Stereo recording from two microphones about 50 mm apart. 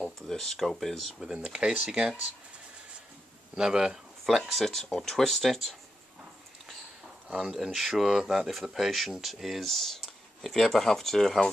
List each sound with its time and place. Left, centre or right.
0.0 s speech: centre
1.2 s speech: centre
3.5 s speech: centre
4.5 s speech: centre
7.2 s speech: centre